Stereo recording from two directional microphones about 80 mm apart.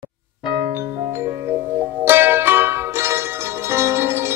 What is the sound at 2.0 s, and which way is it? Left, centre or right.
Music, right.